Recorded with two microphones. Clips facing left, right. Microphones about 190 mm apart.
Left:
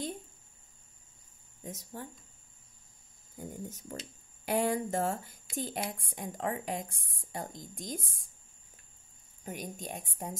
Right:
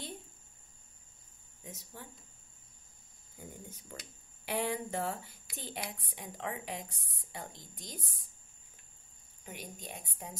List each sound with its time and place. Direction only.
1.6 s speech: 45° left (ahead or behind)
3.3 s a woman's voice: 45° left (ahead or behind)
9.4 s a woman's voice: 45° left (ahead or behind)